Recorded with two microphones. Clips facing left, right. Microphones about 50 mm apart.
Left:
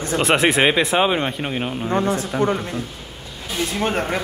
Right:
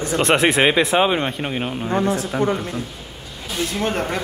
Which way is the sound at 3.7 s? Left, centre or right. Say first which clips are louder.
Left 1 dB; centre.